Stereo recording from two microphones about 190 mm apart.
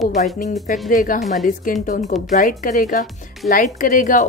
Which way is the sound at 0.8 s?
45° left (ahead or behind).